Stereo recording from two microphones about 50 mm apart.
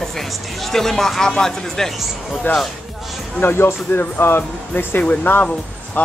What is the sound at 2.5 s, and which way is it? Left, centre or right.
Speech, left.